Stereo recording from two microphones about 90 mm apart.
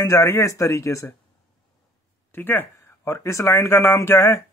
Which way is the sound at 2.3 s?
25° left (ahead or behind).